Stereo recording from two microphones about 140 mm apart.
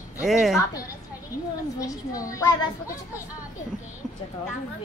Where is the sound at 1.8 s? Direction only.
25° left (ahead or behind).